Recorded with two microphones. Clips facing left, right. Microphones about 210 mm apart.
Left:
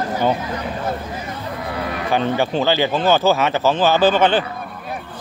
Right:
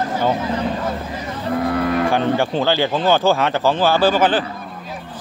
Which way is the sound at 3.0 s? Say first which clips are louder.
Even; 15° right (ahead or behind).